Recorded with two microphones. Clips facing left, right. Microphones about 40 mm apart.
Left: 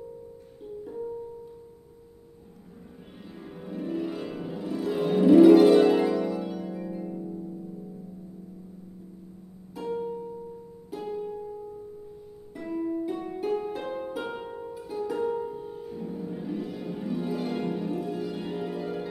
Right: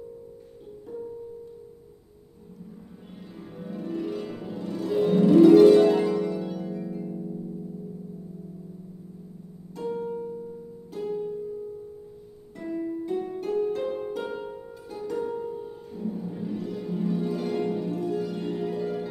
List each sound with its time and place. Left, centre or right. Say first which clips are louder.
3.3 s music: left 1 dB; centre
9.8 s harp: right 1 dB; centre
10.9 s music: right 3 dB; centre
12.5 s harp: left 1 dB; centre